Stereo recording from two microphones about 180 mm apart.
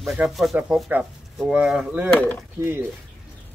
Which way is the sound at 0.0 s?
Centre (ahead or behind).